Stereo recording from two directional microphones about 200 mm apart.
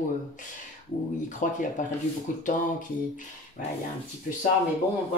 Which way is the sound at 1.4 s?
40° left (ahead or behind).